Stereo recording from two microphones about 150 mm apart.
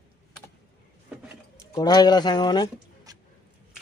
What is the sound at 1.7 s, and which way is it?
Speech, 25° left (ahead or behind).